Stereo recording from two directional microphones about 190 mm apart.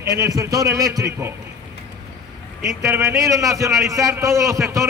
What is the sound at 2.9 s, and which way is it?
A man's voice, 15° right (ahead or behind).